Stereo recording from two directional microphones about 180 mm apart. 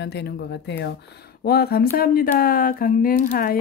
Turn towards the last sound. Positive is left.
turn(degrees=50)  # may be behind; listen again after turning